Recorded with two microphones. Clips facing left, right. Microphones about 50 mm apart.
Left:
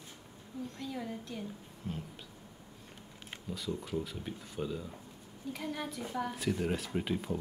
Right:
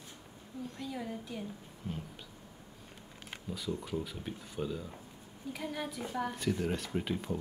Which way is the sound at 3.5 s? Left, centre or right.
Centre.